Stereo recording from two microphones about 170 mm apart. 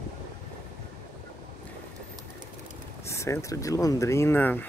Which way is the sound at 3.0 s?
15° left (ahead or behind).